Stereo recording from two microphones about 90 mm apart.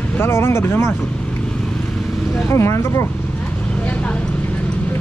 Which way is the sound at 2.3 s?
30° left (ahead or behind).